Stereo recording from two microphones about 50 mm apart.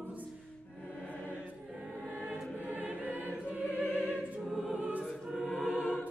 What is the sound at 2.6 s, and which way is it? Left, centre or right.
Choir, right.